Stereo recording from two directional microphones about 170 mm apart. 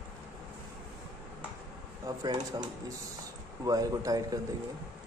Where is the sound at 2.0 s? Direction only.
20° right (ahead or behind).